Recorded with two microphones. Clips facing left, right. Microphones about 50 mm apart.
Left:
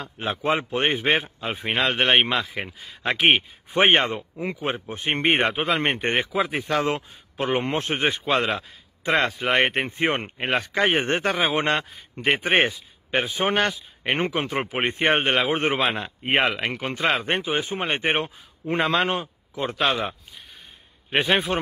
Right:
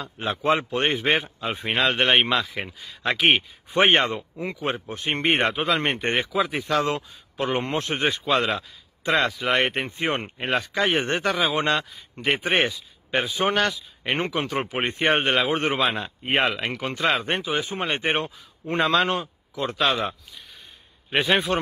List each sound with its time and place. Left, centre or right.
0.0 s speech: centre
4.8 s a man's voice: left
5.1 s speech: centre
5.5 s a man's voice: left
15.8 s a man's voice: centre
21.1 s speech: centre